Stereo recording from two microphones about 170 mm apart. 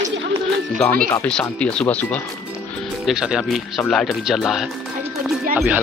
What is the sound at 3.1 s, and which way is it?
Speech, 5° right (ahead or behind).